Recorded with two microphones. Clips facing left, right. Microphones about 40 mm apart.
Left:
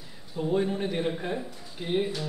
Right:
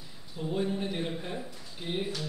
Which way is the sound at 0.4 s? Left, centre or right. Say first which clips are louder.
Left 5 dB; centre.